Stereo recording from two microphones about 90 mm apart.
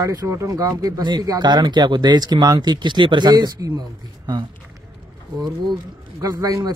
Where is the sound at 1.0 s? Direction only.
55° right (ahead or behind).